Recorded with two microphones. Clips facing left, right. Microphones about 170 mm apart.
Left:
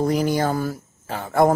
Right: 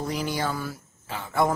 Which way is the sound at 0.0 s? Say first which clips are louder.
Left 8 dB; 45° left (ahead or behind).